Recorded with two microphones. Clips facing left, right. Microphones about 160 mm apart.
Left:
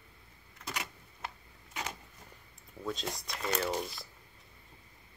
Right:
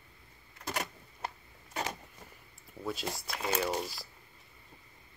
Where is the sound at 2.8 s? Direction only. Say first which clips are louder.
Right 1 dB; 5° right (ahead or behind).